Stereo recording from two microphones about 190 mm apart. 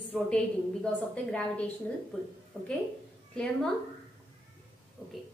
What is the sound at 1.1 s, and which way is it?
A woman's voice, 5° left (ahead or behind).